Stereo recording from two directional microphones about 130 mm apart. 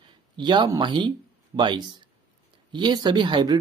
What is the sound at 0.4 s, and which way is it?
Speech, 35° right (ahead or behind).